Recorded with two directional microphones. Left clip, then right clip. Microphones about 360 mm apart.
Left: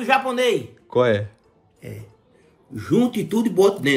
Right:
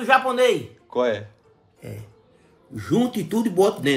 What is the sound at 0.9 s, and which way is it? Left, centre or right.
Speech, left.